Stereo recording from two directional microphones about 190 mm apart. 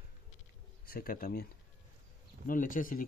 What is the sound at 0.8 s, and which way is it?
Speech, 50° left (ahead or behind).